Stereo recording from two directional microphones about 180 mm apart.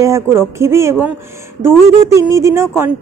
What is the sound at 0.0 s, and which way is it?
A woman's voice, 15° right (ahead or behind).